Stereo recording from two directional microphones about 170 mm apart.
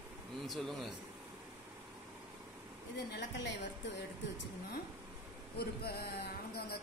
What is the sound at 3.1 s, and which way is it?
Speech, 90° left.